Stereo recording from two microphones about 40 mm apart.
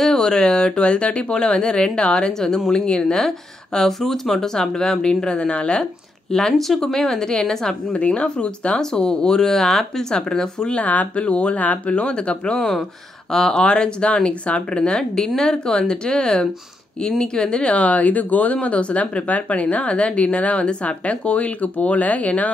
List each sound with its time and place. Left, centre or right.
0.0 s speech: centre
10.8 s speech: left
12.5 s speech: centre; by 22.5 s left